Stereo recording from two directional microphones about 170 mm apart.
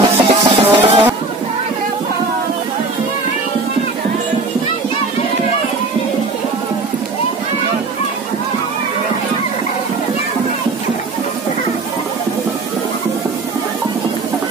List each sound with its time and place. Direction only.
0.0 s music: 30° right (ahead or behind)